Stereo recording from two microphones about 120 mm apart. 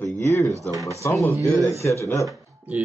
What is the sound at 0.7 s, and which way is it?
Speech, 25° right (ahead or behind).